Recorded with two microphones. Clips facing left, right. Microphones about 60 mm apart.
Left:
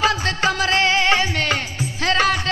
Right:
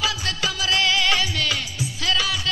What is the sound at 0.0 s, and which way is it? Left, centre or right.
Music, left.